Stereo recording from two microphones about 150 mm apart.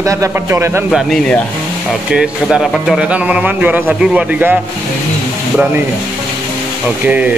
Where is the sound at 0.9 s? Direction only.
5° left (ahead or behind).